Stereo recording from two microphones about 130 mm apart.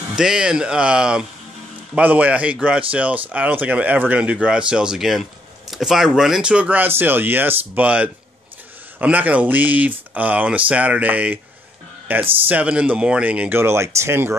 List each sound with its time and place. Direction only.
0.1 s speech: 5° right (ahead or behind)